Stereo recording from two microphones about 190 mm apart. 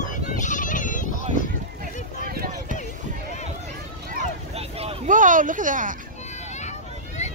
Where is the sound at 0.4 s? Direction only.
40° left (ahead or behind).